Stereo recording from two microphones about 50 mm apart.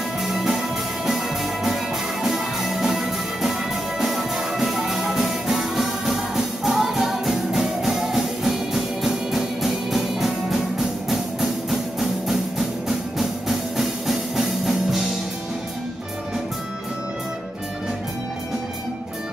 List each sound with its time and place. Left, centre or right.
0.2 s music: centre